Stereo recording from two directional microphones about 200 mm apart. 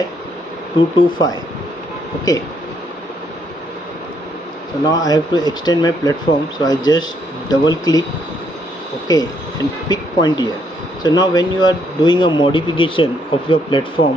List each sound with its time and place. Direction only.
0.7 s speech: 20° left (ahead or behind)
4.8 s speech: 20° left (ahead or behind)
9.0 s speech: 20° left (ahead or behind)